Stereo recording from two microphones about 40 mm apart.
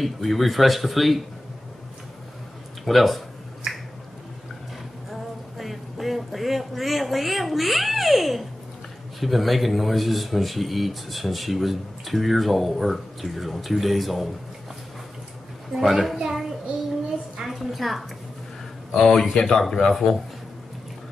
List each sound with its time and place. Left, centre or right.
0.0 s speech: centre
2.8 s speech: centre
5.1 s a sound: centre
9.2 s speech: centre
15.7 s a child's voice: centre